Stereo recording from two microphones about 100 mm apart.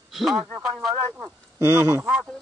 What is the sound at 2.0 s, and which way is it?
Speech, 10° right (ahead or behind).